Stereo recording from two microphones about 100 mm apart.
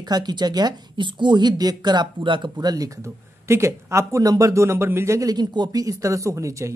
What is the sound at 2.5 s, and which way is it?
Speech, 40° right (ahead or behind).